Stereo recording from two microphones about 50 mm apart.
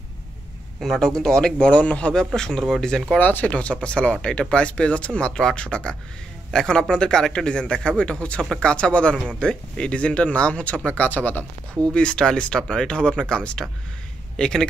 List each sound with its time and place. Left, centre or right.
0.7 s speech: centre
3.2 s speech: left
3.5 s speech: left
11.9 s a man's voice: centre